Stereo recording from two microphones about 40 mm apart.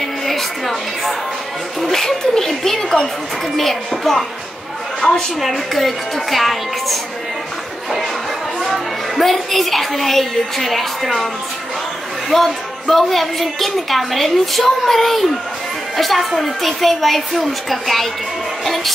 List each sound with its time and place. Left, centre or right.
0.3 s music: centre
1.8 s a woman's voice: centre
5.0 s a woman's voice: centre
5.4 s a woman's voice: centre
8.5 s a woman's voice: centre
12.3 s a woman's voice: centre